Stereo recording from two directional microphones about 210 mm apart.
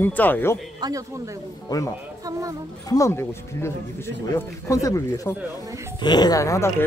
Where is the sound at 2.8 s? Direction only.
15° left (ahead or behind).